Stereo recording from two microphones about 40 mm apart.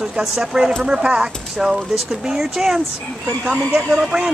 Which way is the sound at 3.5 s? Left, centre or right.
Right.